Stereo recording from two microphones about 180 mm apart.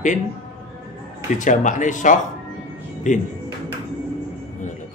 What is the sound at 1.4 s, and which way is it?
Speech, 45° left (ahead or behind).